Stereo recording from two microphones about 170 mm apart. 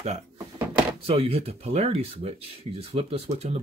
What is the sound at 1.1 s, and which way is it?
Speech, 35° right (ahead or behind).